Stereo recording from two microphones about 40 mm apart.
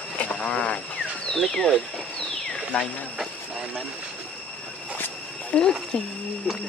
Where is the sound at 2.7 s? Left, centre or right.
Left.